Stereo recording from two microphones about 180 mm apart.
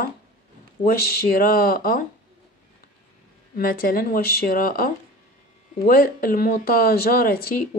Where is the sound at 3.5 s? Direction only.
55° left (ahead or behind).